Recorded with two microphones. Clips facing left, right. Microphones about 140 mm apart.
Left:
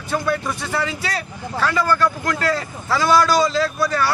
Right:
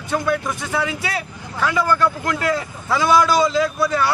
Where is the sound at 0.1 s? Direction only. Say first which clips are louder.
Right 1 dB; centre (ahead or behind).